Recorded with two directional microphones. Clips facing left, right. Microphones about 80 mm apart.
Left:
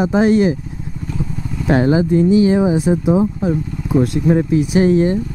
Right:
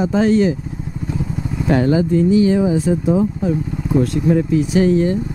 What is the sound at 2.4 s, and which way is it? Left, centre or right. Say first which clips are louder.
Speech: left 1 dB; centre.